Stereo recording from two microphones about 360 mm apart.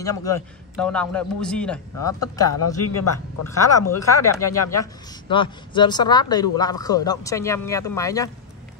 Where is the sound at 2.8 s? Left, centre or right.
Left.